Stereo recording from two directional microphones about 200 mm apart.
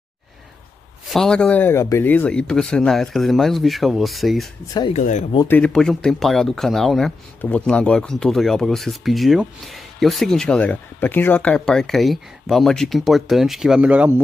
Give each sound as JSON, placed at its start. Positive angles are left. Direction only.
{"t": 1.0, "sound": "speech", "side_deg": 0}
{"t": 4.9, "sound": "speech", "side_deg": 35}
{"t": 5.5, "sound": "speech", "side_deg": 5}